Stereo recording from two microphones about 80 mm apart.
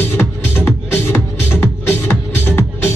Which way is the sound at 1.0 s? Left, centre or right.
Left.